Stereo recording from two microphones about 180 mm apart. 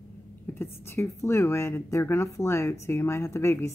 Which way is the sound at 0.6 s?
15° left (ahead or behind).